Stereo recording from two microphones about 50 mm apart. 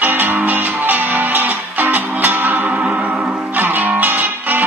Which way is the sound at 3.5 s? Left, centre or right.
Right.